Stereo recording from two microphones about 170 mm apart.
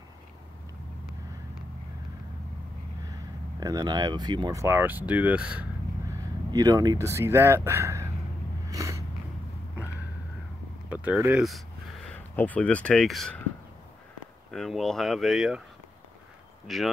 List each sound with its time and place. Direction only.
3.1 s speech: 20° right (ahead or behind)
6.1 s speech: 20° right (ahead or behind)
8.6 s a sound: 20° right (ahead or behind)
10.9 s speech: 10° right (ahead or behind)
14.5 s speech: centre (ahead or behind)
16.6 s speech: centre (ahead or behind)